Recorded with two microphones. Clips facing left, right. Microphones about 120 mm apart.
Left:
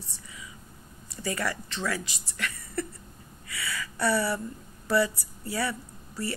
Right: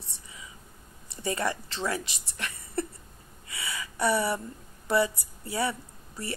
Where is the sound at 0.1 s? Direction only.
25° right (ahead or behind).